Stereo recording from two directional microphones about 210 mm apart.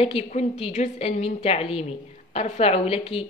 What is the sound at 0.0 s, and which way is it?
A woman's voice, 30° left (ahead or behind).